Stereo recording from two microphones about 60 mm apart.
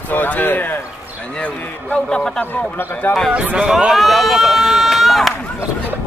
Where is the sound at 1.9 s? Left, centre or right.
Centre.